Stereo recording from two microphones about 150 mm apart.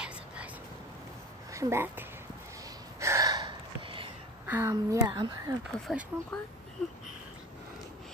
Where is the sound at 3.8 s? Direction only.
35° right (ahead or behind).